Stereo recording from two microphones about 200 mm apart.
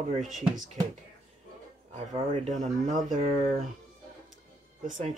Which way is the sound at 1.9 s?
35° right (ahead or behind).